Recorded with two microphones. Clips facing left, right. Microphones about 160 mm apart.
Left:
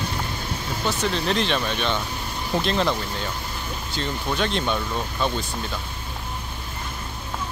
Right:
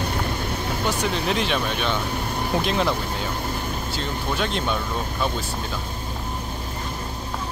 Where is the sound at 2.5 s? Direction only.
10° right (ahead or behind).